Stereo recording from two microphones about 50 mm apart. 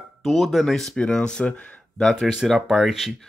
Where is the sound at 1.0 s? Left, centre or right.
Centre.